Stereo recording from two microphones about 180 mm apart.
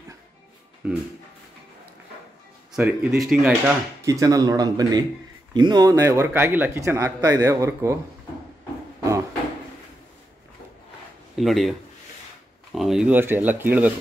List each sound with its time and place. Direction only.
0.8 s a sound: 5° right (ahead or behind)
2.8 s speech: 10° right (ahead or behind)
4.0 s speech: 20° right (ahead or behind)
11.3 s speech: centre (ahead or behind)
12.7 s speech: centre (ahead or behind)